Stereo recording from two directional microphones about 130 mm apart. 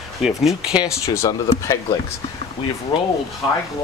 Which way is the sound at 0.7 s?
25° left (ahead or behind).